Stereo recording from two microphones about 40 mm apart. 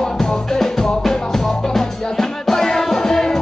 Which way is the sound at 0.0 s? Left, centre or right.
Centre.